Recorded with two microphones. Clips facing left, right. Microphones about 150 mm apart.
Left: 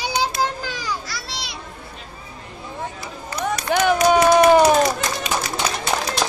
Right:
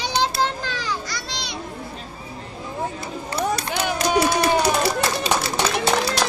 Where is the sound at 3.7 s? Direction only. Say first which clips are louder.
Left 6 dB; 55° left (ahead or behind).